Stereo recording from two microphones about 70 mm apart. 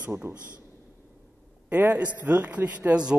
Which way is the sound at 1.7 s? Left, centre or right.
Right.